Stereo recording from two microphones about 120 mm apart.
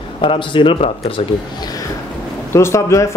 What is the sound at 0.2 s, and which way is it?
Speech, 45° left (ahead or behind).